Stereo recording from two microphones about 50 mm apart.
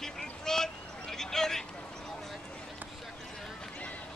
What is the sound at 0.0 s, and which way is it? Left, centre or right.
Vehicle, centre.